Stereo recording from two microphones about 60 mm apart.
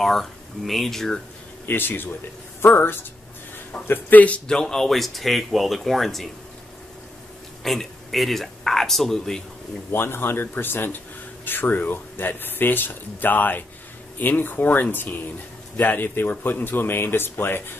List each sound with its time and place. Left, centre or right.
0.0 s speech: centre
1.7 s a man's voice: left
4.5 s speech: centre
7.6 s speech: centre
9.8 s speech: left